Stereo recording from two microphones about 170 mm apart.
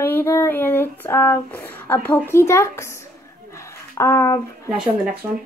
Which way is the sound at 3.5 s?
15° left (ahead or behind).